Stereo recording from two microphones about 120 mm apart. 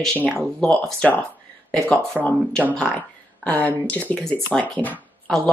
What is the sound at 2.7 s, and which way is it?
Speech, 10° left (ahead or behind).